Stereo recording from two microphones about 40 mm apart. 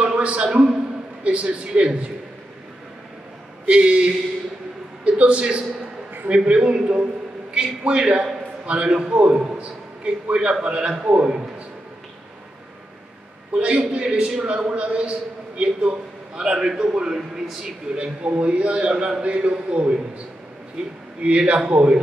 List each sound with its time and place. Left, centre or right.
0.0 s a sound: right
1.2 s a man's voice: right
3.6 s a man's voice: right
7.5 s a man's voice: right
13.5 s a man's voice: right; by 17.6 s centre
17.9 s a man's voice: right